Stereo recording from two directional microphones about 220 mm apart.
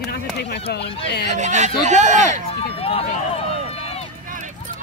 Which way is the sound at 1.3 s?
30° right (ahead or behind).